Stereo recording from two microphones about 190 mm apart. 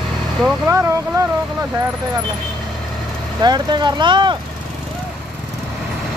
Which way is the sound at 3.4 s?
20° right (ahead or behind).